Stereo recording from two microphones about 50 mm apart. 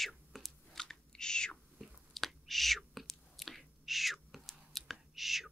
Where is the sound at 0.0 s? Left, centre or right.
Centre.